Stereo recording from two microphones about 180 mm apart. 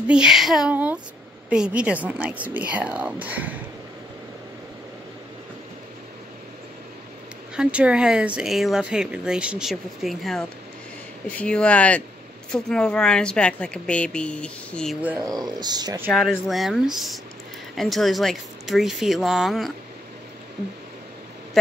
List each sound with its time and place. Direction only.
0.1 s speech: 5° right (ahead or behind)
7.5 s speech: 5° right (ahead or behind)
15.0 s speech: 10° right (ahead or behind)
15.2 s speech: 20° right (ahead or behind)
16.1 s speech: centre (ahead or behind)